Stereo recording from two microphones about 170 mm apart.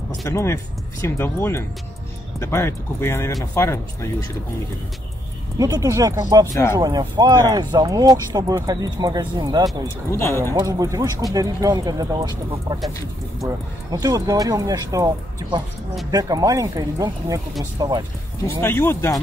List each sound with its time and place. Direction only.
0.3 s speech: 15° left (ahead or behind)
5.6 s speech: 20° right (ahead or behind)
6.4 s speech: 15° left (ahead or behind)
6.8 s speech: 25° right (ahead or behind)
10.1 s speech: 15° left (ahead or behind)
10.4 s speech: 20° right (ahead or behind)
13.8 s speech: 20° right (ahead or behind)
18.6 s speech: 15° left (ahead or behind)